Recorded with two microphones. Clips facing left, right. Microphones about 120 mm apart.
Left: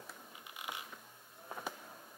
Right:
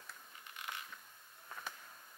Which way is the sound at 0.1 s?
10° left (ahead or behind).